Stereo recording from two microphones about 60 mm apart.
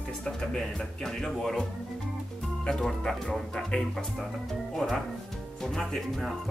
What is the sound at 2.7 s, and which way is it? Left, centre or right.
Speech, centre.